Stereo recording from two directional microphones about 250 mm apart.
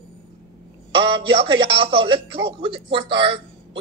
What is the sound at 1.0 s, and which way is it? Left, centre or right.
Music, right.